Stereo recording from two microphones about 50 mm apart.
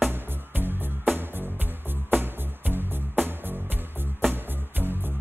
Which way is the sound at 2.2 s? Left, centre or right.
Right.